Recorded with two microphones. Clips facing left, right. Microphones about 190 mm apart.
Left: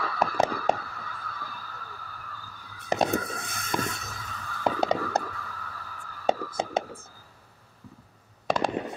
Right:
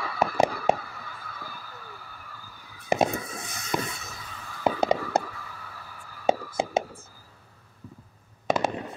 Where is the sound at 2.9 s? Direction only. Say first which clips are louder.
Right 1 dB; 10° right (ahead or behind).